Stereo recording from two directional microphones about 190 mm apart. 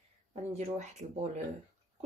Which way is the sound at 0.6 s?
35° right (ahead or behind).